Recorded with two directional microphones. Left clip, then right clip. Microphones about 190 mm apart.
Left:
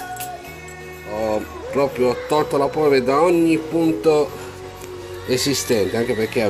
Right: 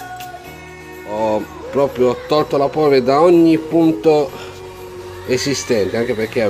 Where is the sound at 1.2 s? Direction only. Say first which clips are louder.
Right 4 dB; 15° right (ahead or behind).